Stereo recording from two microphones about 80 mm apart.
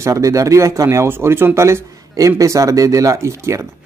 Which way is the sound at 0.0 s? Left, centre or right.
Right.